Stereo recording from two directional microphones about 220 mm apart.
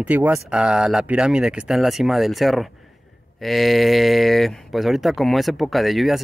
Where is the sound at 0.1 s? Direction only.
5° right (ahead or behind).